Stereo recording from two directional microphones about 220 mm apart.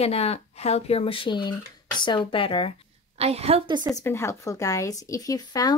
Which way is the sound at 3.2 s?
30° right (ahead or behind).